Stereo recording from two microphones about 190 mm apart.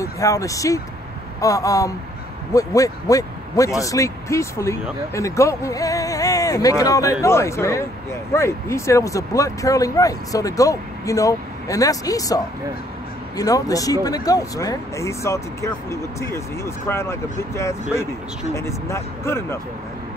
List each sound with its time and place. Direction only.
0.0 s speech: 15° left (ahead or behind)
13.4 s speech: 20° left (ahead or behind)